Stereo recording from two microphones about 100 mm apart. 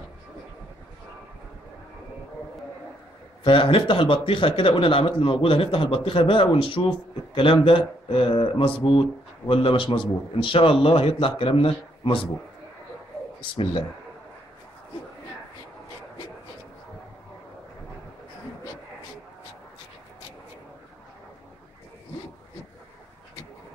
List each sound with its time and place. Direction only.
3.4 s speech: 65° left (ahead or behind)
13.4 s speech: 55° left (ahead or behind)